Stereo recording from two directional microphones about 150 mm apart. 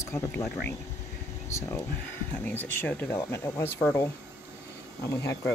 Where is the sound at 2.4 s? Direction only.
10° left (ahead or behind).